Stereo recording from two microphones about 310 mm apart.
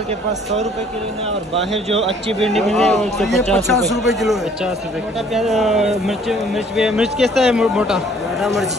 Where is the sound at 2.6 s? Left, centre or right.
Centre.